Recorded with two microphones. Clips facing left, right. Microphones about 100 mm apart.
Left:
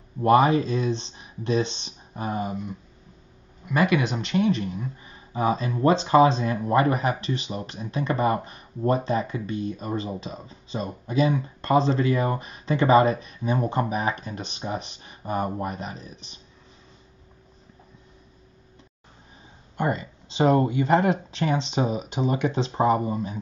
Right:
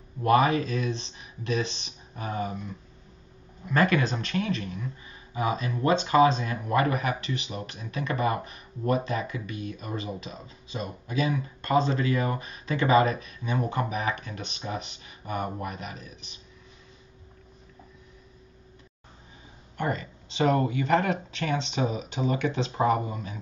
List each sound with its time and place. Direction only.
0.2 s speech: 30° left (ahead or behind)
3.6 s speech: 15° left (ahead or behind); by 16.3 s 30° left (ahead or behind)
19.8 s speech: 20° left (ahead or behind)